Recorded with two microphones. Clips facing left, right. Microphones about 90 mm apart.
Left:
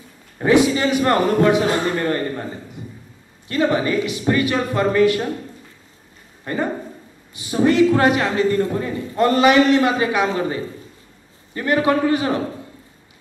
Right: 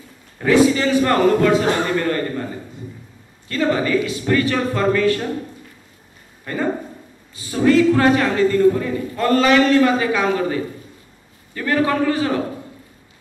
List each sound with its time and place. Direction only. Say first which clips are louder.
0.4 s a man's voice: right 1 dB; 20° left (ahead or behind)
6.5 s a man's voice: right 1 dB; 25° left (ahead or behind)